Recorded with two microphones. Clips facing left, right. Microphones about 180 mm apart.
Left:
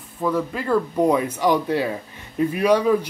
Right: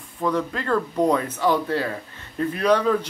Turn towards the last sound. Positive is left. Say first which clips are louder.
# left 2 dB
turn(degrees=10)  # may be behind; listen again after turning